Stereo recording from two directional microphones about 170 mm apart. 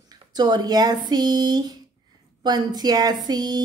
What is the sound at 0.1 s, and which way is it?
A woman's voice, 25° right (ahead or behind).